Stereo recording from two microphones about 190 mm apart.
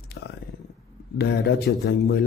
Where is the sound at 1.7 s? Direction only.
55° left (ahead or behind).